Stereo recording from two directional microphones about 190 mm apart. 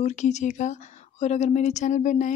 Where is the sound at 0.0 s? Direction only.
40° left (ahead or behind).